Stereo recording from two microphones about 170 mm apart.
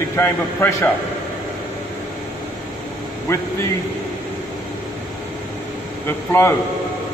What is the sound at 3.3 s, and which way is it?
Speech, 15° left (ahead or behind).